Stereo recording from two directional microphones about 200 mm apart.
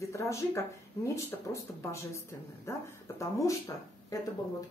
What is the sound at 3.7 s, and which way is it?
Speech, 20° left (ahead or behind).